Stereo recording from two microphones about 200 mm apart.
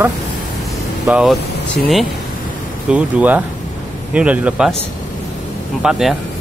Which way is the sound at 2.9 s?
5° right (ahead or behind).